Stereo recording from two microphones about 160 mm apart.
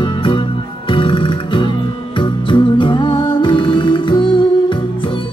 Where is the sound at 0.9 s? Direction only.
30° left (ahead or behind).